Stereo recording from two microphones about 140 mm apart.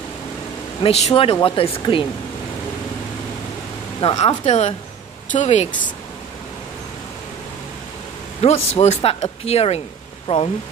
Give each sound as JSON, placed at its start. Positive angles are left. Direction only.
{"t": 0.8, "sound": "speech", "side_deg": 45}
{"t": 4.0, "sound": "speech", "side_deg": 50}
{"t": 8.4, "sound": "speech", "side_deg": 45}